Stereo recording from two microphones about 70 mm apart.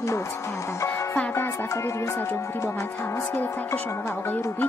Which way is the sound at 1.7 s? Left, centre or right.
Left.